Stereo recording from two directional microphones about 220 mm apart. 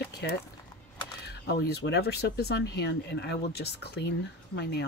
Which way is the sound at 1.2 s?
50° left (ahead or behind).